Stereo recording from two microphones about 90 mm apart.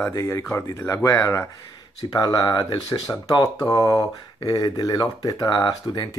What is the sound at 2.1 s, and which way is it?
Speech, 50° left (ahead or behind).